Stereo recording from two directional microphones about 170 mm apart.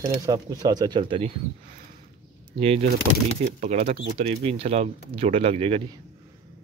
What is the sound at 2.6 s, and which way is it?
Speech, 35° right (ahead or behind).